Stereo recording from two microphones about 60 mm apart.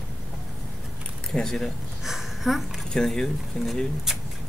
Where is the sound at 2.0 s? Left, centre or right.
Centre.